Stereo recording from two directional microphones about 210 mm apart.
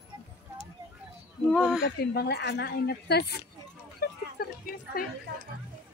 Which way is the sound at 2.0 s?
50° left (ahead or behind).